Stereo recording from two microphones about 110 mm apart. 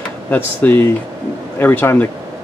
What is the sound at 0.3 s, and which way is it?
Speech, 15° left (ahead or behind).